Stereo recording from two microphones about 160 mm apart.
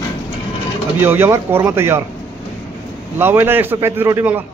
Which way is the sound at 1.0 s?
15° right (ahead or behind).